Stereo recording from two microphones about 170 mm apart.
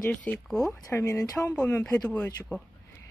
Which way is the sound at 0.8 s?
20° left (ahead or behind).